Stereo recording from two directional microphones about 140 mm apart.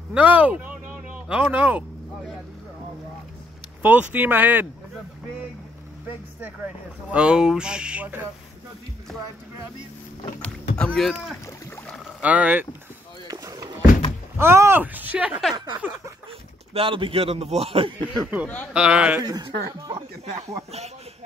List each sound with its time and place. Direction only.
0.1 s speech: 10° right (ahead or behind)
3.8 s speech: 10° right (ahead or behind)
6.0 s speech: 10° right (ahead or behind)
10.8 s speech: 5° left (ahead or behind)
13.3 s run: 25° right (ahead or behind)
14.4 s speech: 15° right (ahead or behind)
15.5 s speech: 30° right (ahead or behind)
16.7 s a man's voice: 40° right (ahead or behind)
18.7 s speech: 5° right (ahead or behind)
19.2 s speech: 30° right (ahead or behind)